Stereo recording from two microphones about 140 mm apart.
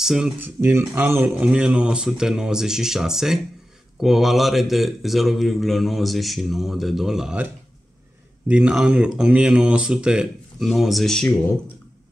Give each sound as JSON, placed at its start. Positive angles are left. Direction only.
{"t": 0.0, "sound": "a man's voice", "side_deg": -5}
{"t": 0.4, "sound": "a man's voice", "side_deg": -15}
{"t": 8.5, "sound": "a man's voice", "side_deg": -5}